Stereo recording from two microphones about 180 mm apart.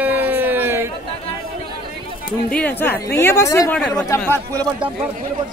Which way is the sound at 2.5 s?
10° left (ahead or behind).